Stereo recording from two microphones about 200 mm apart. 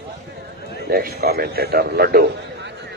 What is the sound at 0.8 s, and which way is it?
A man's voice, 50° right (ahead or behind).